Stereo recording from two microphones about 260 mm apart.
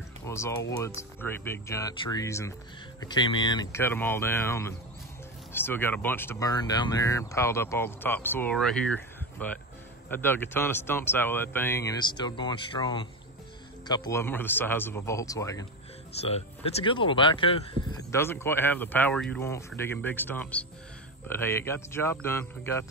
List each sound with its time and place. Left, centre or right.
0.3 s speech: centre
18.1 s speech: centre